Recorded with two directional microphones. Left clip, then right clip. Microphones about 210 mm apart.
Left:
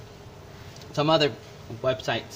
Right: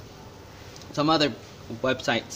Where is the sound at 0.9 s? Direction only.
5° right (ahead or behind).